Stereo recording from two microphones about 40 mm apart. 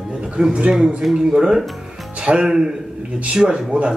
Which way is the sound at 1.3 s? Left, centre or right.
Centre.